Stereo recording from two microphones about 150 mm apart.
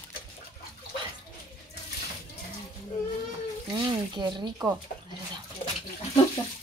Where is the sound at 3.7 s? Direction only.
30° right (ahead or behind).